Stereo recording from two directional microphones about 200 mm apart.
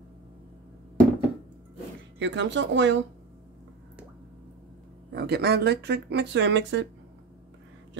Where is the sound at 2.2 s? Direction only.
65° right (ahead or behind).